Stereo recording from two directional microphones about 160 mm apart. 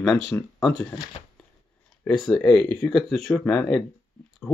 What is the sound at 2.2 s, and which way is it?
Speech, 5° left (ahead or behind).